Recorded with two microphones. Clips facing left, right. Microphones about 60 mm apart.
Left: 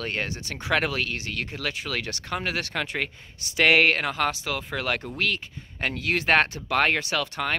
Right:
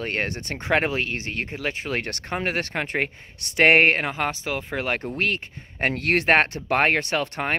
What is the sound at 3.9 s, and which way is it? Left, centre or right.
Speech, right.